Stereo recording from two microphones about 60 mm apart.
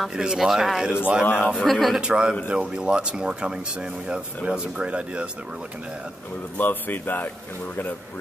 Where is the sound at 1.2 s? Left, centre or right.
Left.